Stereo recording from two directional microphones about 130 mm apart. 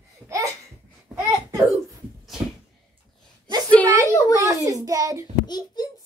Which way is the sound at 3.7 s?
10° left (ahead or behind).